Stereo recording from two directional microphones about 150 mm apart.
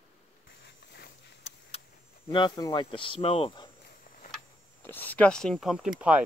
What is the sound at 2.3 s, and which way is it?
Speech, 30° left (ahead or behind).